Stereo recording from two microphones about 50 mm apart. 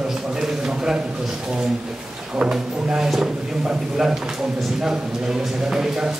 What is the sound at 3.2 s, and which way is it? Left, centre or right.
A man's voice, right.